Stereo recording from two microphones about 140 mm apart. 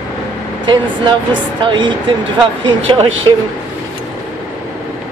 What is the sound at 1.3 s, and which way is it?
Speech, 35° right (ahead or behind).